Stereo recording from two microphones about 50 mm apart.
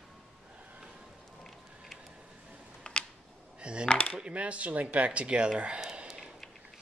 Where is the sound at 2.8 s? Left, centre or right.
Centre.